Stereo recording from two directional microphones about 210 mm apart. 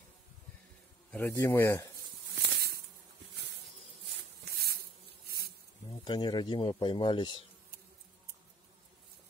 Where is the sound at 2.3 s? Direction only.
50° right (ahead or behind).